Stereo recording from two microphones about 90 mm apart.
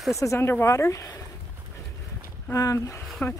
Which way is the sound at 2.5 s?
35° left (ahead or behind).